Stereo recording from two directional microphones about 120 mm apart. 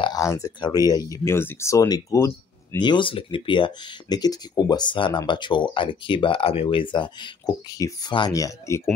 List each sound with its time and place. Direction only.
0.2 s speech: 25° left (ahead or behind)
2.8 s speech: 40° left (ahead or behind)
7.4 s speech: 30° left (ahead or behind)